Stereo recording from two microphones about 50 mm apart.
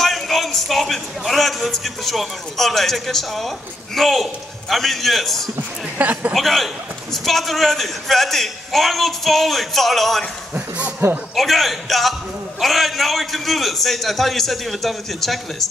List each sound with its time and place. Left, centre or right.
0.0 s speech: centre
5.6 s speech: right
6.3 s speech: centre
11.0 s a man's voice: right
11.3 s speech: centre